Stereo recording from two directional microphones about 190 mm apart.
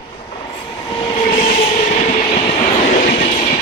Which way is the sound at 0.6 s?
25° left (ahead or behind).